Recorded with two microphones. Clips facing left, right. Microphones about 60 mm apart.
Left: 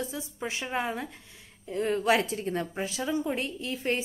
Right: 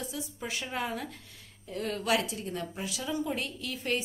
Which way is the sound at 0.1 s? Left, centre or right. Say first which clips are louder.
Left 2 dB; left.